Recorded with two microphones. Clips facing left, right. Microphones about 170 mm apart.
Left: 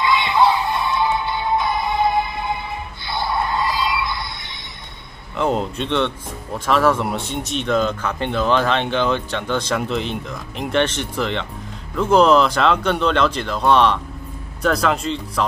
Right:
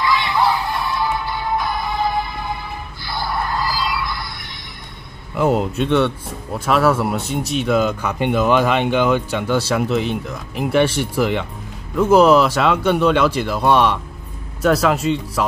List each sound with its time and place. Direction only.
0.0 s music: 20° left (ahead or behind)
3.1 s a sound: 25° left (ahead or behind)
5.3 s speech: 5° right (ahead or behind)